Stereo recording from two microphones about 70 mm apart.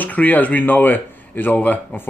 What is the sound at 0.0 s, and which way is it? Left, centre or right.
Speech, left.